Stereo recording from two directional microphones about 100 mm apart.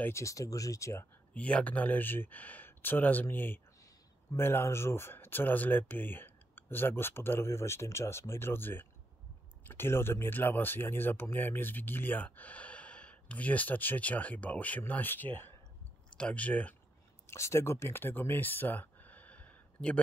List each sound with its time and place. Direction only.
0.0 s speech: 30° left (ahead or behind)
1.3 s speech: 15° left (ahead or behind)
17.3 s speech: 30° left (ahead or behind)